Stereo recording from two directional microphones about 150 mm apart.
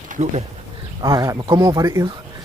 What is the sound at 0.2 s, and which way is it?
Speech, 45° right (ahead or behind).